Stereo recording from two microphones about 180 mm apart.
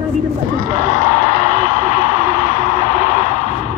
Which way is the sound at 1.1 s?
40° left (ahead or behind).